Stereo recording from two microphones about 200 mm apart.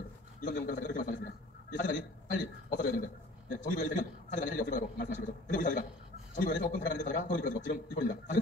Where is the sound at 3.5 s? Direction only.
40° left (ahead or behind).